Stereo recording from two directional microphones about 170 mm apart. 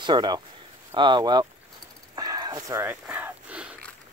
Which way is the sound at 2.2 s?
20° right (ahead or behind).